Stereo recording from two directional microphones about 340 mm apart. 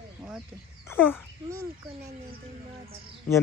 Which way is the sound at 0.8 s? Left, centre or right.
Centre.